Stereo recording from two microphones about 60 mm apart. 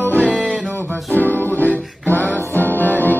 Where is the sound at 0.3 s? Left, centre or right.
Centre.